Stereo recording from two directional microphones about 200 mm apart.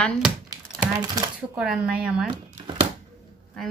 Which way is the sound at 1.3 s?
5° right (ahead or behind).